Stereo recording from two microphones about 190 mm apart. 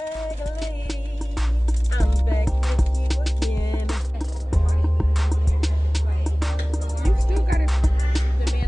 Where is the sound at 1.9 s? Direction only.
15° left (ahead or behind).